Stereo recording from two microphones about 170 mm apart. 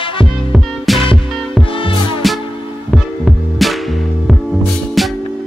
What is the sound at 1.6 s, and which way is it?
Music, 30° left (ahead or behind).